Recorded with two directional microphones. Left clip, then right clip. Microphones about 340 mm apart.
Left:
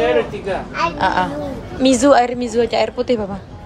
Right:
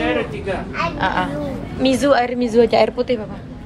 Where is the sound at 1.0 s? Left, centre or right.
Centre.